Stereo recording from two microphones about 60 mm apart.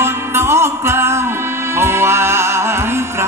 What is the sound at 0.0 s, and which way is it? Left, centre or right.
Music, right.